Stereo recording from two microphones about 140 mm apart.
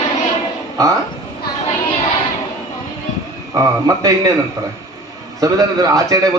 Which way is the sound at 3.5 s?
25° right (ahead or behind).